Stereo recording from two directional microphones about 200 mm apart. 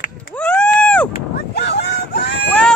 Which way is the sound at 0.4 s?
5° left (ahead or behind).